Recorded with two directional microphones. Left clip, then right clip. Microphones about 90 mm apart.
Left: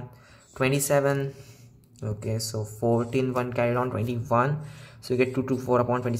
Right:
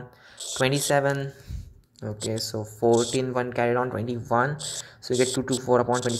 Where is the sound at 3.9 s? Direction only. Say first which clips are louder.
Even; 30° right (ahead or behind).